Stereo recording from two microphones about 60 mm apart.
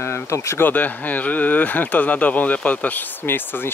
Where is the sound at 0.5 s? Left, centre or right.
Left.